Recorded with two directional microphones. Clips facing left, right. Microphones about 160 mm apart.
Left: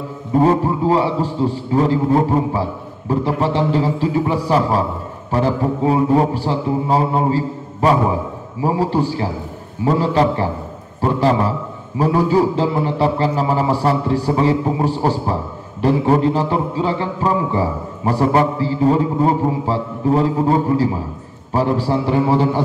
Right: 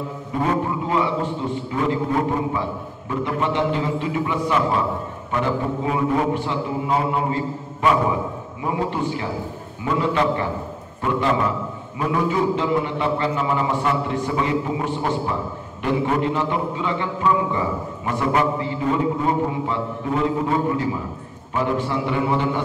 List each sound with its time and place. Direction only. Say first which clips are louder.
0.3 s a man's voice: left 8 dB; 35° left (ahead or behind)